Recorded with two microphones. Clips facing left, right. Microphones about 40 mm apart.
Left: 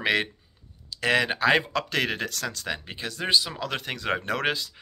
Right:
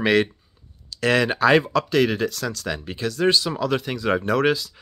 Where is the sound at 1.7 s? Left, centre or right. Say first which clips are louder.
Right 7 dB; left; by 3.5 s centre.